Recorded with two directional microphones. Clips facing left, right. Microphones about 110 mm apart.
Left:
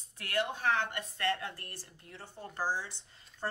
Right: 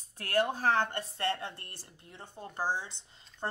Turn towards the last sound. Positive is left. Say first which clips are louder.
# right 2 dB
turn(degrees=-20)  # may be behind; listen again after turning